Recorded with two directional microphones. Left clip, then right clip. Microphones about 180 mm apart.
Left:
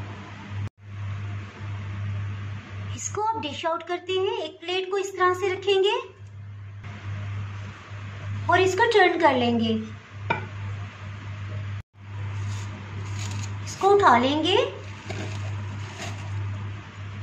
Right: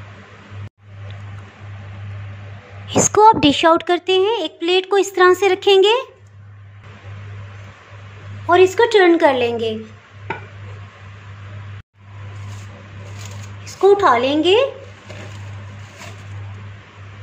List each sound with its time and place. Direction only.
2.9 s a woman's voice: 50° right (ahead or behind)
8.5 s a woman's voice: 45° right (ahead or behind)
13.9 s a woman's voice: 45° right (ahead or behind)